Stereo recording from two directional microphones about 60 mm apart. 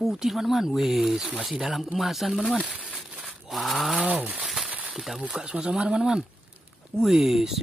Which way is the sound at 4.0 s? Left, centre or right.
Right.